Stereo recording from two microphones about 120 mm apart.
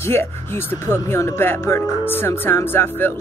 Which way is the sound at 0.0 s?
20° left (ahead or behind).